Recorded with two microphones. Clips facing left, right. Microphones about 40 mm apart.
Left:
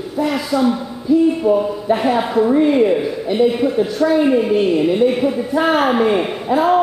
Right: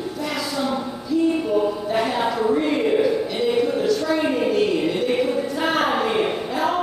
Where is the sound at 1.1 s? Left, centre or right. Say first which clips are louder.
Left 6 dB; left.